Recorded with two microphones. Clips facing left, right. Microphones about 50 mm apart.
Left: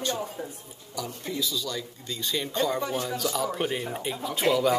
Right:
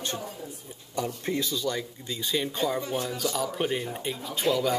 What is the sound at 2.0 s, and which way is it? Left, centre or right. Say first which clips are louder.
Speech: right 1 dB; centre.